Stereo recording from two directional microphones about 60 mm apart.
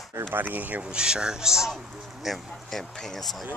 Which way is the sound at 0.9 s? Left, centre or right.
Centre.